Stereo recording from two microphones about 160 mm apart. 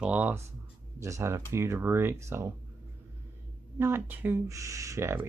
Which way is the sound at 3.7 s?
15° right (ahead or behind).